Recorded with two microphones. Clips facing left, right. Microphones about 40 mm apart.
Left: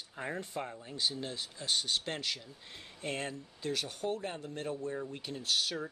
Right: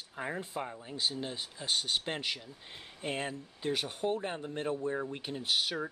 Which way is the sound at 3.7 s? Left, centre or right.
Right.